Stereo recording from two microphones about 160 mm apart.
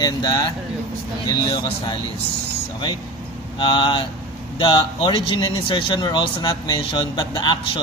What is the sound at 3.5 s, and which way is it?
Speech, 30° left (ahead or behind).